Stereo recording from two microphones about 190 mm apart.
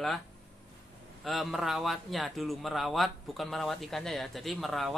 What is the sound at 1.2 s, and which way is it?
A man's voice, centre (ahead or behind).